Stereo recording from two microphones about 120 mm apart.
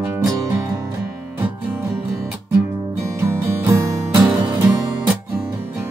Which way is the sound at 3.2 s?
20° right (ahead or behind).